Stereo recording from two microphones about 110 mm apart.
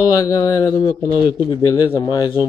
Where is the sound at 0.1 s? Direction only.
35° left (ahead or behind).